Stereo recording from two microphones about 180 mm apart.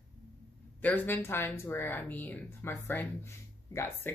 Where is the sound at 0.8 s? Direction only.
10° left (ahead or behind).